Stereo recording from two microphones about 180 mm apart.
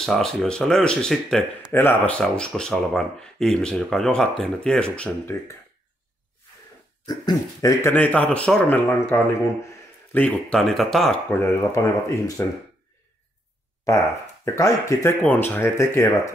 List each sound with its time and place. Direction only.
0.0 s speech: centre (ahead or behind)
1.7 s speech: 15° left (ahead or behind)
7.1 s speech: 20° left (ahead or behind); by 11.1 s centre (ahead or behind)
11.3 s speech: 15° left (ahead or behind)
13.9 s speech: 20° left (ahead or behind)